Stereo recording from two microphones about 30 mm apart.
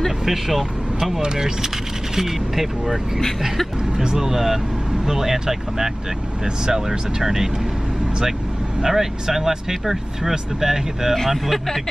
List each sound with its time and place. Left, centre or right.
0.2 s speech: centre
1.2 s speech: right
2.1 s speech: centre
4.2 s speech: centre
8.8 s speech: centre
11.2 s speech: centre